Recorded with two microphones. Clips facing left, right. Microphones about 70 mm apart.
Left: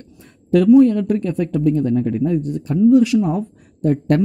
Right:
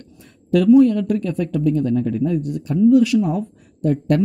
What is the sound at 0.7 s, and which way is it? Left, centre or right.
Speech, left.